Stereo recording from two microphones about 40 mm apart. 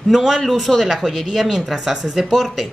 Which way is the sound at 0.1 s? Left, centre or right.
Centre.